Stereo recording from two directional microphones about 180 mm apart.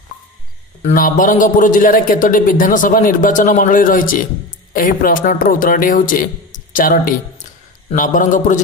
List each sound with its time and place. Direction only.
0.8 s a man's voice: 50° left (ahead or behind)